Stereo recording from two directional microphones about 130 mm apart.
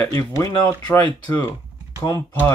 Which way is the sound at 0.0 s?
20° left (ahead or behind).